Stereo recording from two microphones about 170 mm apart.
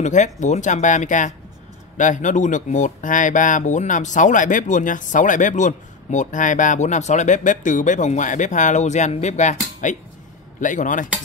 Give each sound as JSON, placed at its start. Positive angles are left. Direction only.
{"t": 0.0, "sound": "speech", "side_deg": 45}